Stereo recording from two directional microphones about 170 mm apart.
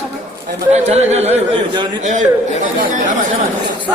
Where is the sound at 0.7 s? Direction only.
40° right (ahead or behind).